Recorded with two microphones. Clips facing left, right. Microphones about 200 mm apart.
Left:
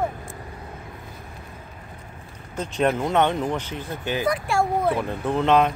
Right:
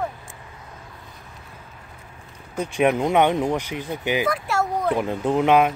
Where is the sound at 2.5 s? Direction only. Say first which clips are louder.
Right 2 dB; 10° right (ahead or behind).